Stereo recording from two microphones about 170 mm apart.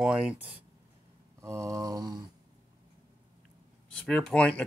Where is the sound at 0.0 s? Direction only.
5° right (ahead or behind).